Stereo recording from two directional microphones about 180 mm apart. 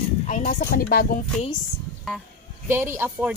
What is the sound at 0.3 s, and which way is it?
Speech, 50° left (ahead or behind).